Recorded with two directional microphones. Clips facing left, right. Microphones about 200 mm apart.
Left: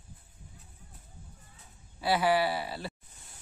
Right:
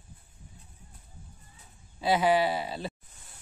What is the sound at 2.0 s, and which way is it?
Speech, 20° right (ahead or behind).